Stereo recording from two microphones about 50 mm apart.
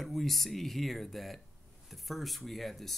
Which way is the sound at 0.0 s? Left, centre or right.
Centre.